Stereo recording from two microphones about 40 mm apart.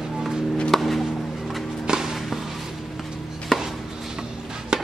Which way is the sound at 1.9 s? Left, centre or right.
Centre.